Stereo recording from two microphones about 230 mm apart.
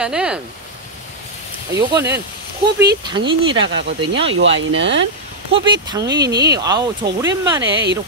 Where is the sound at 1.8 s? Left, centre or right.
Centre.